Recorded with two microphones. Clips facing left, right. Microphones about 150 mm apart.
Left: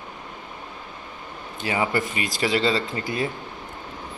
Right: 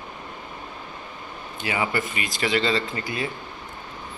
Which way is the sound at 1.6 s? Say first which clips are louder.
Left 2 dB; 35° left (ahead or behind).